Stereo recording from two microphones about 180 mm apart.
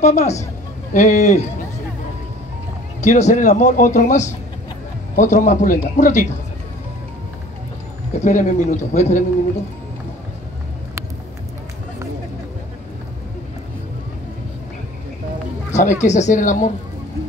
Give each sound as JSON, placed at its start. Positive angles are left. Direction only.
{"t": 0.0, "sound": "speech", "side_deg": 40}
{"t": 3.0, "sound": "speech", "side_deg": 40}
{"t": 8.1, "sound": "speech", "side_deg": 40}
{"t": 15.7, "sound": "speech", "side_deg": 40}